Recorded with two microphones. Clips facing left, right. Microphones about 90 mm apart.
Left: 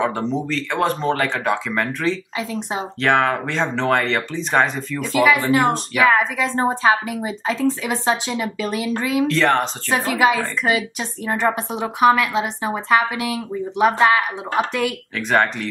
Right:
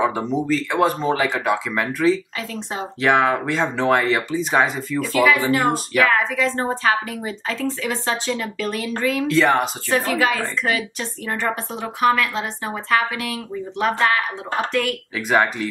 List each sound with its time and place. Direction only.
0.0 s speech: 5° right (ahead or behind)
2.3 s a woman's voice: 15° left (ahead or behind)
3.0 s speech: 5° right (ahead or behind)
5.1 s a woman's voice: 5° left (ahead or behind)
9.3 s speech: 5° right (ahead or behind)
9.8 s a woman's voice: 20° left (ahead or behind)
15.1 s speech: 5° right (ahead or behind)